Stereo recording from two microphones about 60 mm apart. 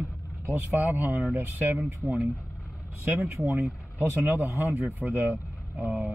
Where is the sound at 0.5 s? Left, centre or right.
Right.